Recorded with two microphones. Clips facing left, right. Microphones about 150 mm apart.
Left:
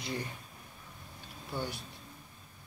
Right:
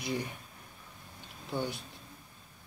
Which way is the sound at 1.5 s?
15° right (ahead or behind).